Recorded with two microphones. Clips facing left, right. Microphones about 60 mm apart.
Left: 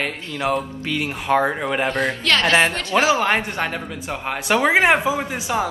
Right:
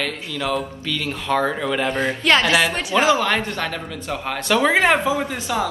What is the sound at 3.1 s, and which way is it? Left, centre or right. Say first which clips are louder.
Speech: even; left.